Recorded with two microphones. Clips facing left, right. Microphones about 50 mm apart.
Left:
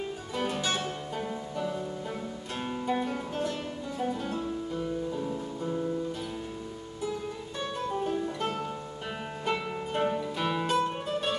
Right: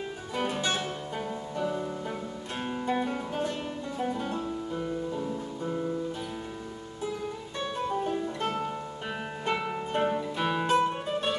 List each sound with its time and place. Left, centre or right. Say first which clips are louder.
0.3 s music: right 1 dB; centre
2.9 s music: right 1 dB; centre
7.5 s music: right 2 dB; centre